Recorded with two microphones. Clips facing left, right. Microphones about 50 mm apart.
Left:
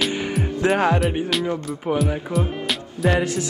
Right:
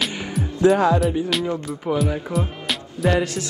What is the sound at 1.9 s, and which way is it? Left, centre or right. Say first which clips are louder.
Music: even; centre.